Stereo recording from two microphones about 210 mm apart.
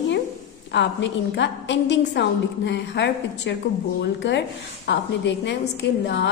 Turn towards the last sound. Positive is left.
turn(degrees=55)  # may be behind; listen again after turning